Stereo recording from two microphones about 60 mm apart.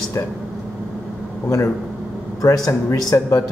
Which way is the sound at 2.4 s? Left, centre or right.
Left.